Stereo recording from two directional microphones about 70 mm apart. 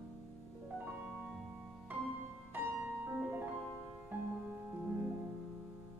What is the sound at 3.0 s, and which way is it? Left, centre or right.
Music, right.